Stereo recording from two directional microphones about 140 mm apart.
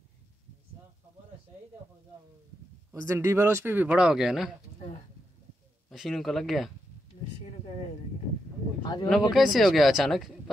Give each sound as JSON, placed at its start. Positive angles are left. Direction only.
{"t": 2.9, "sound": "speech", "side_deg": -20}
{"t": 5.9, "sound": "speech", "side_deg": 0}
{"t": 8.8, "sound": "speech", "side_deg": 30}
{"t": 9.3, "sound": "speech", "side_deg": 0}